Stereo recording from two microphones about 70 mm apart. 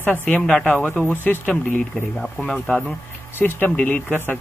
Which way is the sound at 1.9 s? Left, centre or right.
Centre.